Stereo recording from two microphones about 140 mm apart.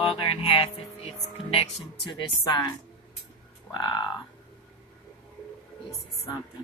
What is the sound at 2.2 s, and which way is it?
Speech, 30° left (ahead or behind).